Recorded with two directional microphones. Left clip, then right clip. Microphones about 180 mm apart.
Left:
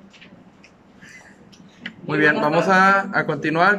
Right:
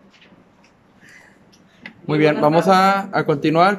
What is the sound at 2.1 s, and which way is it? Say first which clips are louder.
Speech: right 2 dB; 20° right (ahead or behind).